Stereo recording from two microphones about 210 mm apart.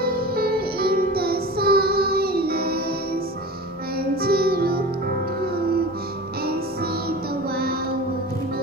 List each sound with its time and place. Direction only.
0.0 s music: 45° right (ahead or behind)
4.1 s music: 45° right (ahead or behind)